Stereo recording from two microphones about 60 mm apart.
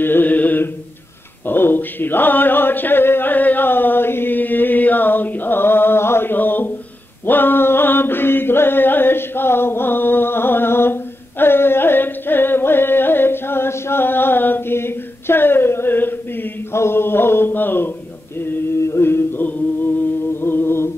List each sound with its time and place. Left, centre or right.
0.0 s mantra: left
1.4 s a sound: left
7.2 s chant: left
16.7 s mantra: left
18.8 s music: left